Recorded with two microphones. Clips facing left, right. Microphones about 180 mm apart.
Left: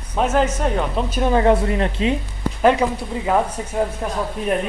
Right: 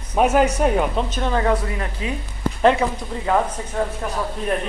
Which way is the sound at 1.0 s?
10° left (ahead or behind).